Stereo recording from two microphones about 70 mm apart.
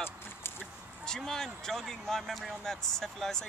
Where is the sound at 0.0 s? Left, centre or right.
Left.